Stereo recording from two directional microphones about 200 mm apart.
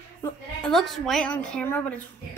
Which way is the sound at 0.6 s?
Centre (ahead or behind).